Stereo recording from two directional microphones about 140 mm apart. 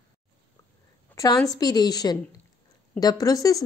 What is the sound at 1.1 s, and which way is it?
A woman's voice, 25° left (ahead or behind).